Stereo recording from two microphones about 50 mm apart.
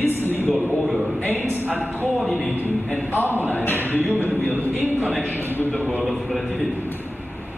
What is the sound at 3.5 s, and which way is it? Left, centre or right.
Speech, left.